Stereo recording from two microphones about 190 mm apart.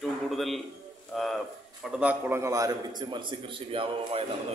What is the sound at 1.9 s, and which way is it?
A man's voice, 10° right (ahead or behind).